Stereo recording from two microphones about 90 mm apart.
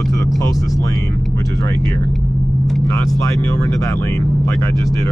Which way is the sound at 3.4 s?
30° left (ahead or behind).